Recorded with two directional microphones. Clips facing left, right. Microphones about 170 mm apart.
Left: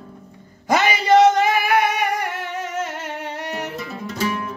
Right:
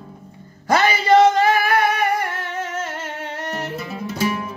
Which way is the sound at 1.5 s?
15° left (ahead or behind).